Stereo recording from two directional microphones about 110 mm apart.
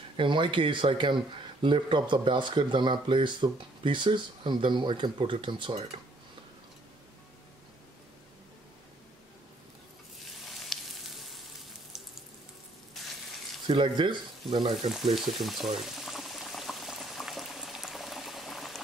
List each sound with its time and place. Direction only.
0.2 s speech: 50° right (ahead or behind)
10.6 s frying: centre (ahead or behind)
13.0 s frying: centre (ahead or behind)
13.7 s speech: 45° right (ahead or behind)
14.9 s boiling: centre (ahead or behind)